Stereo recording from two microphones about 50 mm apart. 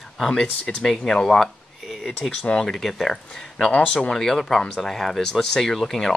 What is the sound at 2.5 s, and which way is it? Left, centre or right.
Speech, centre.